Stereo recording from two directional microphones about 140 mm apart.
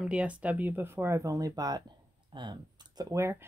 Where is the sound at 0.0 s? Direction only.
10° right (ahead or behind).